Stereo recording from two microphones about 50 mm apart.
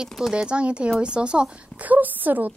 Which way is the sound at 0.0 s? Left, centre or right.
Centre.